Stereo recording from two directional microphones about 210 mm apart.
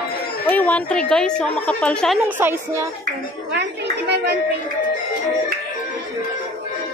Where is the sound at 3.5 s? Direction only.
55° right (ahead or behind).